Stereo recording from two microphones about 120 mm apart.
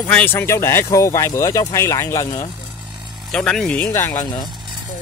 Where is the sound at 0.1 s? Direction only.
15° left (ahead or behind).